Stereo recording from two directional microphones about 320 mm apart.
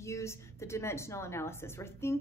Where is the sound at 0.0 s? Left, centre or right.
Centre.